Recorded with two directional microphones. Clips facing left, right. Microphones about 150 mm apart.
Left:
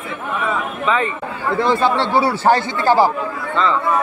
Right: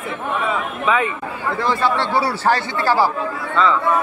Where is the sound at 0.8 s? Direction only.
5° right (ahead or behind).